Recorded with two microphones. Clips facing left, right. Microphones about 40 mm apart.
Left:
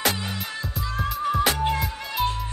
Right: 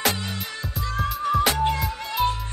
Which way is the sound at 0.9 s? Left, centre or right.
Centre.